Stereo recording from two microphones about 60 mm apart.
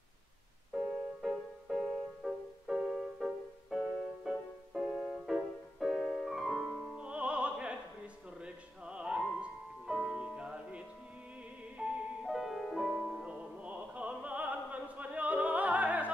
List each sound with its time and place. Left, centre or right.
0.7 s music: centre
7.0 s music: centre
11.8 s music: centre
13.1 s opera: centre